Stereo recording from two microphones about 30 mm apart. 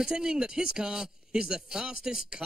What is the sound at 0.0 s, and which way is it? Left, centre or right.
Speech, right.